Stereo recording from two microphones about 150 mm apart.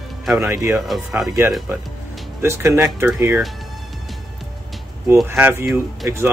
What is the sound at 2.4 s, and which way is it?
Speech, 20° right (ahead or behind).